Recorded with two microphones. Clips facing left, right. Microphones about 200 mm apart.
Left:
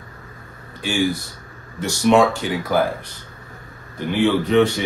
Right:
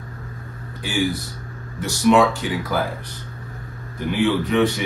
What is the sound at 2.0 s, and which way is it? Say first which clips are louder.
Speech: left 1 dB; 25° left (ahead or behind).